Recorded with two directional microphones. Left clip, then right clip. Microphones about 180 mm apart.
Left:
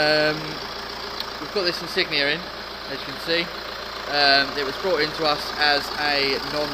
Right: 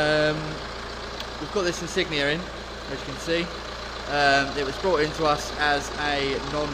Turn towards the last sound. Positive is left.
turn(degrees=-5)  # may be behind; listen again after turning